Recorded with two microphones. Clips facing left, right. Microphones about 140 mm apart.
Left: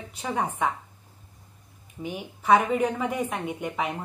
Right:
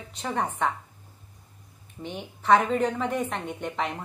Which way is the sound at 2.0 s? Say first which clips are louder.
Left 2 dB; 5° left (ahead or behind).